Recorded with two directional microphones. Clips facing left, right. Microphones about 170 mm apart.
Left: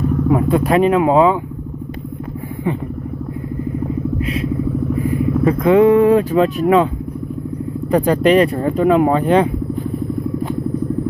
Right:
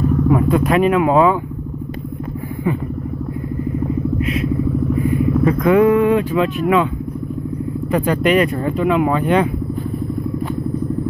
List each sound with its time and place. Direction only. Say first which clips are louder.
0.3 s speech: left 2 dB; 30° left (ahead or behind)
4.2 s vehicle: right 1 dB; 30° left (ahead or behind)
5.1 s speech: left 1 dB; 30° left (ahead or behind)
7.9 s speech: left 3 dB; 35° left (ahead or behind)